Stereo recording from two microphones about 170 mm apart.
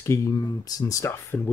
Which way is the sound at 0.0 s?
15° left (ahead or behind).